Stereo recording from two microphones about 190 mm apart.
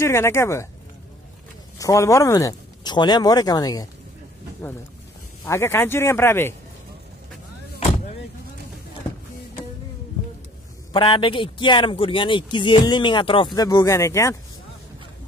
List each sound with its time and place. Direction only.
0.0 s speech: 15° left (ahead or behind)
1.8 s speech: 15° left (ahead or behind)
5.4 s speech: 15° left (ahead or behind)
10.9 s speech: 25° left (ahead or behind)